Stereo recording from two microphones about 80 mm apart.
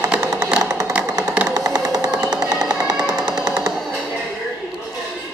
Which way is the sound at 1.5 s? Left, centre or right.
Right.